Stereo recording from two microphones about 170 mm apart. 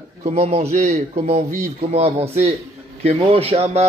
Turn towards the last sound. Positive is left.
turn(degrees=-40)  # may be behind; listen again after turning